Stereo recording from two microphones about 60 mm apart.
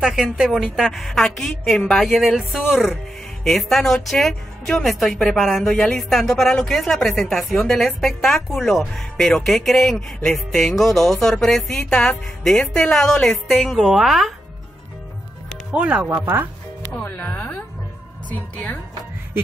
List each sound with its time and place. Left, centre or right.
0.0 s a woman's voice: centre
3.4 s a man's voice: centre
15.7 s speech: right
17.0 s speech: left